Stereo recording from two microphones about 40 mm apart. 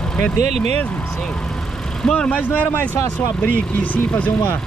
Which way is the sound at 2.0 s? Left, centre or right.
Left.